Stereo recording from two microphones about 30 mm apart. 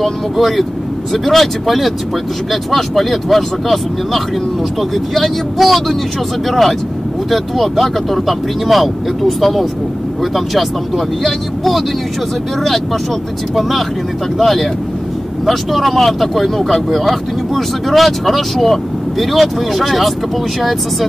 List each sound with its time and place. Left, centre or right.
0.0 s speech: centre
7.2 s speech: centre
13.6 s speech: centre